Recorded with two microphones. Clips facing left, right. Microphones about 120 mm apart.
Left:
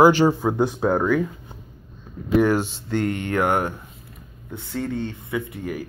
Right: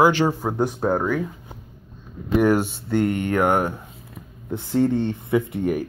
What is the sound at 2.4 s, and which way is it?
Speech, 10° right (ahead or behind).